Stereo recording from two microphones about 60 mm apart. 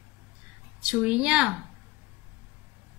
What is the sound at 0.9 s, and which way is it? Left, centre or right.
Speech, centre.